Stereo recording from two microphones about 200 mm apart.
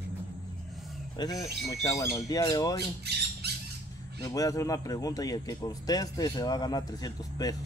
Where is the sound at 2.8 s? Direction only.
55° right (ahead or behind).